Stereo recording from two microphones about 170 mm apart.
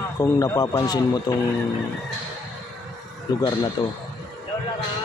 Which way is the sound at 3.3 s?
20° left (ahead or behind).